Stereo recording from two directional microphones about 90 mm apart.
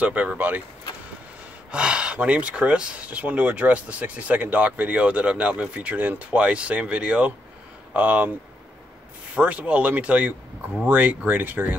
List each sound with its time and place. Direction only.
0.0 s speech: 15° right (ahead or behind)
1.7 s speech: 10° right (ahead or behind)
9.3 s speech: 15° right (ahead or behind)